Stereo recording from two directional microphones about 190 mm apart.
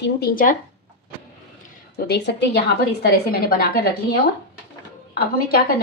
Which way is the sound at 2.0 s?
65° left (ahead or behind).